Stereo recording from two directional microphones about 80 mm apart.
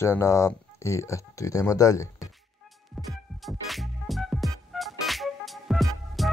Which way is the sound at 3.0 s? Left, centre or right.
Centre.